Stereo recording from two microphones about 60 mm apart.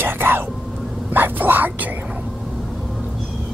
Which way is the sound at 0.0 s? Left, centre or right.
Right.